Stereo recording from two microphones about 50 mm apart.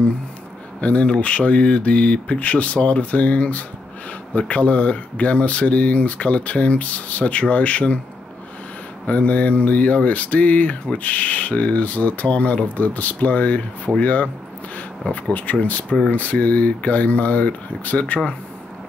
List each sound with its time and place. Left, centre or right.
0.7 s speech: left
9.0 s speech: left
15.6 s speech: left